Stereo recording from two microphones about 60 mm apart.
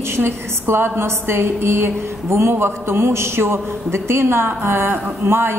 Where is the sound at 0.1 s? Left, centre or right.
Right.